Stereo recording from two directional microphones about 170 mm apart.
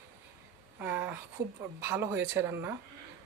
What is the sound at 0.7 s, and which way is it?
Speech, 10° right (ahead or behind).